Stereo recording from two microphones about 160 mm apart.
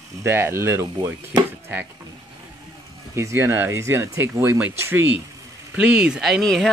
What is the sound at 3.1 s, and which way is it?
Speech, 15° right (ahead or behind).